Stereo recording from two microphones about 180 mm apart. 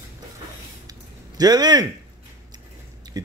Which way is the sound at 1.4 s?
20° right (ahead or behind).